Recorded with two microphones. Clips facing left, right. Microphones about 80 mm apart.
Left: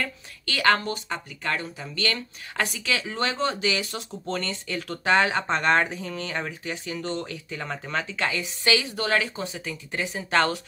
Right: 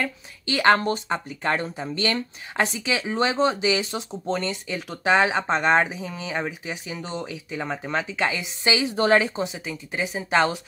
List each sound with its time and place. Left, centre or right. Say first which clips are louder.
0.0 s speech: right 3 dB; right